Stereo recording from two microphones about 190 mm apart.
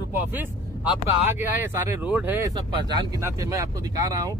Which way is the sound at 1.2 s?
10° right (ahead or behind).